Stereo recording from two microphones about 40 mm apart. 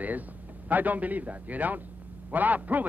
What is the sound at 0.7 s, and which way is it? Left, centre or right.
A woman's voice, right.